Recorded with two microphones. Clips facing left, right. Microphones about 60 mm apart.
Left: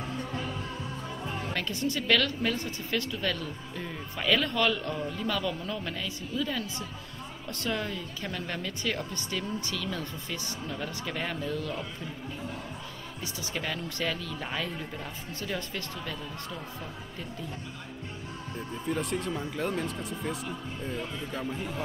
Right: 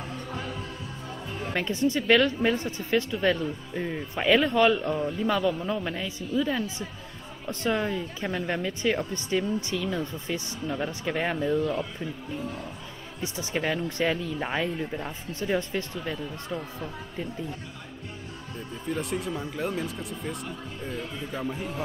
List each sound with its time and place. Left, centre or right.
1.5 s speech: right
13.2 s speech: right
18.9 s a man's voice: centre